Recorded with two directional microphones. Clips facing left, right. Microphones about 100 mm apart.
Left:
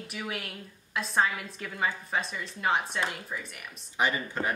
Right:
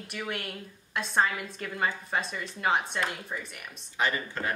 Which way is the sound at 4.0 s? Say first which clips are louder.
Left 1 dB; 15° left (ahead or behind).